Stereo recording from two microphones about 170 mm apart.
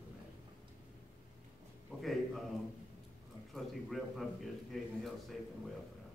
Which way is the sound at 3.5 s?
Centre (ahead or behind).